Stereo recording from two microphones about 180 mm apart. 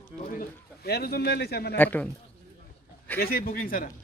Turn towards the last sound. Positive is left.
turn(degrees=50)  # may be behind; listen again after turning